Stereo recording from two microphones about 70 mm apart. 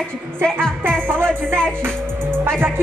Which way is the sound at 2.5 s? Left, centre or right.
Right.